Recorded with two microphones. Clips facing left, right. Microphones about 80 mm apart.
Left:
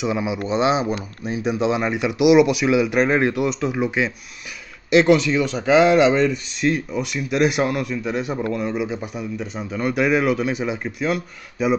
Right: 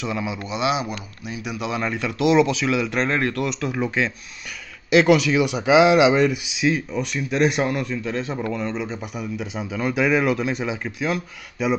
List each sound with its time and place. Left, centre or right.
0.0 s speech: centre
0.5 s speech: left
1.8 s speech: centre
9.1 s speech: centre